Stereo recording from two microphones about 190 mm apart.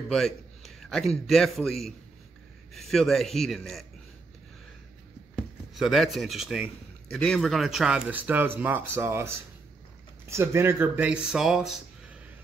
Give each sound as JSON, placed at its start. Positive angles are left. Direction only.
{"t": 0.1, "sound": "a man's voice", "side_deg": 0}
{"t": 5.8, "sound": "speech", "side_deg": 0}